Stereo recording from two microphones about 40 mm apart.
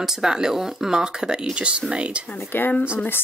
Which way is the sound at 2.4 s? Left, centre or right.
Left.